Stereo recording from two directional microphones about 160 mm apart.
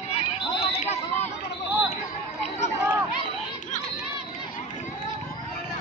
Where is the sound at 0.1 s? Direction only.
40° left (ahead or behind).